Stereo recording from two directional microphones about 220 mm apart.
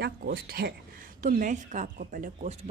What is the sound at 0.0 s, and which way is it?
A woman's voice, 45° right (ahead or behind).